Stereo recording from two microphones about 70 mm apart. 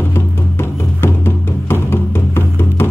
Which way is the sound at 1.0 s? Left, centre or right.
Left.